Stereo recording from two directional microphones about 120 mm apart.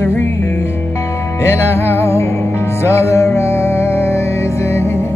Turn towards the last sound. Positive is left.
turn(degrees=20)  # may be behind; listen again after turning